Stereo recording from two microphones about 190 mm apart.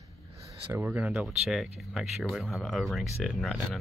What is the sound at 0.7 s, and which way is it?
Speech, 10° right (ahead or behind).